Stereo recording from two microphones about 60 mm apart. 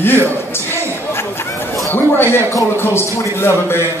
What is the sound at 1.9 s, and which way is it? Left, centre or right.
A man's voice, left.